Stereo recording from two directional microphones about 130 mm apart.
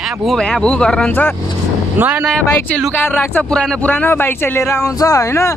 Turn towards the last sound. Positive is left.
turn(degrees=20)  # may be behind; listen again after turning